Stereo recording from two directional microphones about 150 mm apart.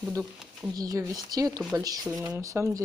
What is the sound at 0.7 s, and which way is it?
Speech, 25° right (ahead or behind).